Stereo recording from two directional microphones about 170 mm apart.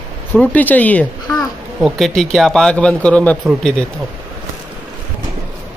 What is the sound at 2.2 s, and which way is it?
Speech, centre (ahead or behind).